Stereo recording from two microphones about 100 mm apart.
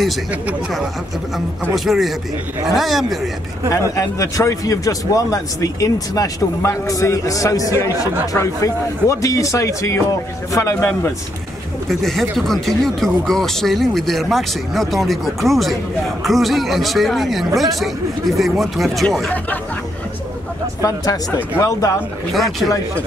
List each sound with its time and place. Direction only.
0.3 s speech: 15° right (ahead or behind)
1.9 s speech: centre (ahead or behind)
3.7 s a man's voice: 35° left (ahead or behind)
11.9 s speech: centre (ahead or behind)
20.8 s speech: 35° left (ahead or behind)
22.3 s speech: centre (ahead or behind)